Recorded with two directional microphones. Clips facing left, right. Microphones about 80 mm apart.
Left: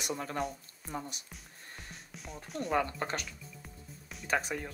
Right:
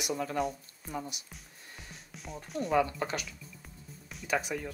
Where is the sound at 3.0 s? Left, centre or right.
Left.